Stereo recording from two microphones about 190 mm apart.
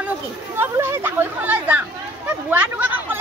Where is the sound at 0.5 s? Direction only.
15° right (ahead or behind).